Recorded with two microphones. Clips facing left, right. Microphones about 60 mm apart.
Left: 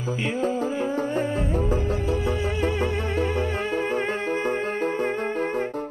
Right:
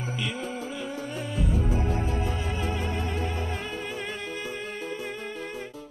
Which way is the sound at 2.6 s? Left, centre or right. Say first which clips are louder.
Left 5 dB; left.